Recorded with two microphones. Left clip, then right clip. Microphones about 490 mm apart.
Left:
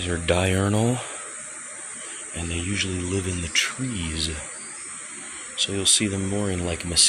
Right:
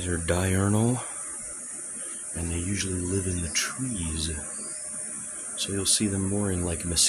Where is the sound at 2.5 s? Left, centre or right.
Right.